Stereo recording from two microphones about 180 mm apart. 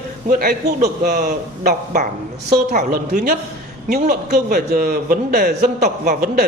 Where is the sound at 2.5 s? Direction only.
50° right (ahead or behind).